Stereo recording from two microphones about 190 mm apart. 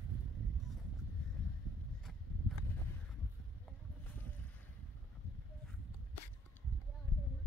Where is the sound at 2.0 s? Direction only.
Centre (ahead or behind).